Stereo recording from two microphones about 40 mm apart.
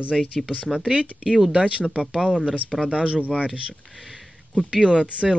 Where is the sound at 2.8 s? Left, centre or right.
Right.